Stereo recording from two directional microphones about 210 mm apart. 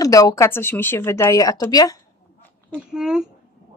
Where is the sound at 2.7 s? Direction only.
5° right (ahead or behind).